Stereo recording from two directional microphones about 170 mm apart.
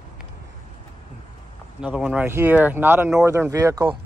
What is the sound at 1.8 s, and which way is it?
Speech, 5° right (ahead or behind).